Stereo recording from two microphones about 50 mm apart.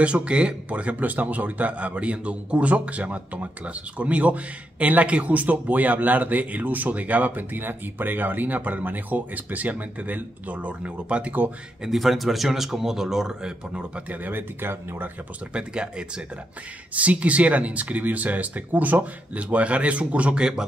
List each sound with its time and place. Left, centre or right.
0.0 s a man's voice: right
11.8 s speech: centre
14.2 s speech: right
15.5 s speech: centre
16.9 s speech: right